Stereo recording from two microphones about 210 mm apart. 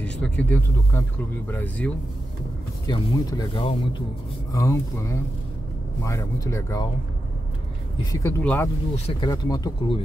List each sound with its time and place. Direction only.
0.0 s speech: 5° left (ahead or behind)
2.9 s speech: 20° left (ahead or behind)
8.1 s speech: 15° left (ahead or behind)
8.9 s speech: 30° left (ahead or behind)
9.3 s speech: 15° left (ahead or behind)